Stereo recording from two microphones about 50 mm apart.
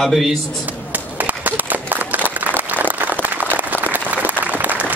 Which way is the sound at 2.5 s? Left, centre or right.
Right.